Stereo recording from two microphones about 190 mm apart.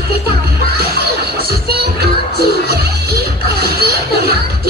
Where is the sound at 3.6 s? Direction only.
55° right (ahead or behind).